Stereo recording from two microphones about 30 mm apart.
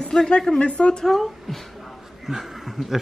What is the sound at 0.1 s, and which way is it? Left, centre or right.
Speech, centre.